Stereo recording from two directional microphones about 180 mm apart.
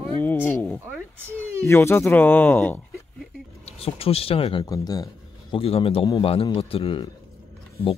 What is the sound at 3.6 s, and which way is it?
Speech, 35° left (ahead or behind).